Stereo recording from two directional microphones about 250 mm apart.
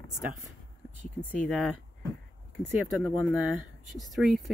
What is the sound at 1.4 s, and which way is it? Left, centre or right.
Speech, centre.